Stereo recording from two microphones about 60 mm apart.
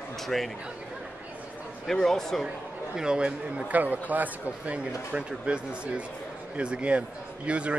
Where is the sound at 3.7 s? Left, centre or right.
Right.